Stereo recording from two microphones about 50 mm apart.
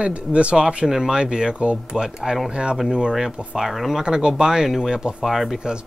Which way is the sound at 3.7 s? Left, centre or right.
Centre.